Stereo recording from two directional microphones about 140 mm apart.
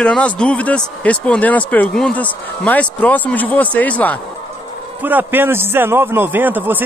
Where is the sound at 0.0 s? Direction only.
5° left (ahead or behind).